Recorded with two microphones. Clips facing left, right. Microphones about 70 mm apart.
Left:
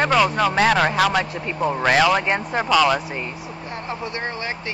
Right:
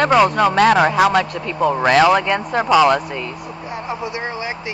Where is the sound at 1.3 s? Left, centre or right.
Right.